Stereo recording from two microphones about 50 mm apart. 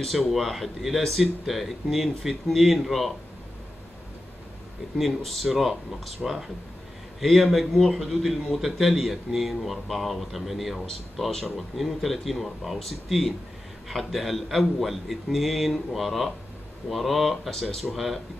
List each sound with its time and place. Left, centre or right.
0.0 s a man's voice: centre
4.9 s a man's voice: centre
17.8 s a man's voice: centre